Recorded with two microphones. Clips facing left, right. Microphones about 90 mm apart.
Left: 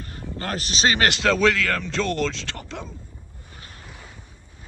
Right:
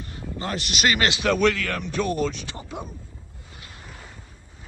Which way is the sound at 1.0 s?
75° left (ahead or behind).